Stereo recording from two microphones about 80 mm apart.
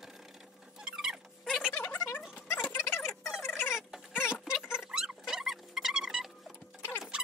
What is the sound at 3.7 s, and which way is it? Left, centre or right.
Cat, centre.